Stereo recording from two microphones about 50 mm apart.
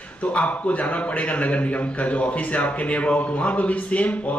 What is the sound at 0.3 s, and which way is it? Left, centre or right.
A man's voice, left.